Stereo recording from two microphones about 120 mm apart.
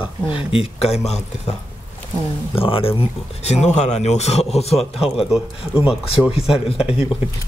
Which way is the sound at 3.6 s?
70° left (ahead or behind).